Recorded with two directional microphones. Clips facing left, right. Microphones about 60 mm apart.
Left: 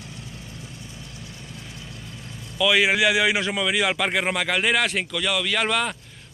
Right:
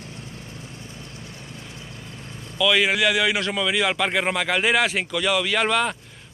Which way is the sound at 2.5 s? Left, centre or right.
Centre.